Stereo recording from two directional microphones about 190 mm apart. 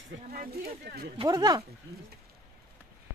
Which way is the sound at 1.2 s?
20° right (ahead or behind).